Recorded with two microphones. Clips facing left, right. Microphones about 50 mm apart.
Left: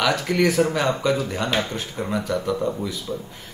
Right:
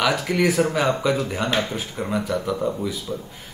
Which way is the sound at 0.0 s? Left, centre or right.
Centre.